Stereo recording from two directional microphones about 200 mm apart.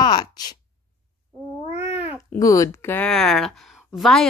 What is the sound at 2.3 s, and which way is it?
Speech, 15° left (ahead or behind).